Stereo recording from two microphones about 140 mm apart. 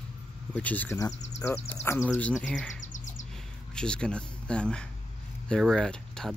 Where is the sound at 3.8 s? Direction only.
5° left (ahead or behind).